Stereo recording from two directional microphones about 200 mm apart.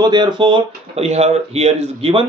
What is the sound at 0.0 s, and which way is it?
Speech, 20° right (ahead or behind).